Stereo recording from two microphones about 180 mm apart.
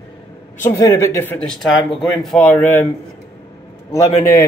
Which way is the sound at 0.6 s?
15° left (ahead or behind).